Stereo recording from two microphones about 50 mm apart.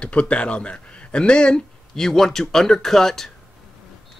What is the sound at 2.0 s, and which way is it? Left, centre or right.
Speech, centre.